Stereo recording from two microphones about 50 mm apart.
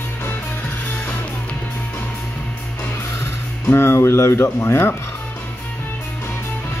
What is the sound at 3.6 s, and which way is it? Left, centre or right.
Speech, left.